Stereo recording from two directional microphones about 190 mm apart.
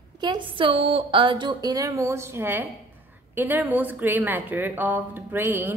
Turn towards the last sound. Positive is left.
turn(degrees=-10)  # may be behind; listen again after turning